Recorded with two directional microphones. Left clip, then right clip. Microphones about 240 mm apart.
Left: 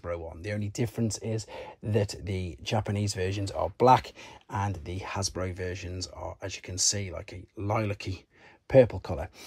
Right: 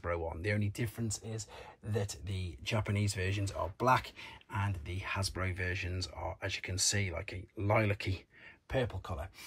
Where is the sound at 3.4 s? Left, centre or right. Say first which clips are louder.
Left 8 dB; left.